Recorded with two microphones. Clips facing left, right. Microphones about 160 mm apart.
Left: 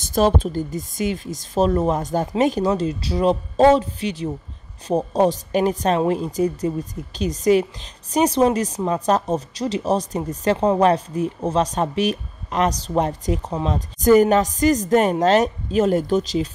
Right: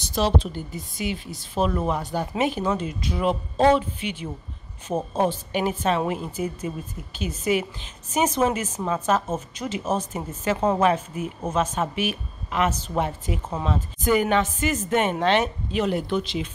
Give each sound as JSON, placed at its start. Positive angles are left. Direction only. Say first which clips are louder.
{"t": 0.0, "sound": "a woman's voice", "louder": "left 5 dB", "side_deg": 50}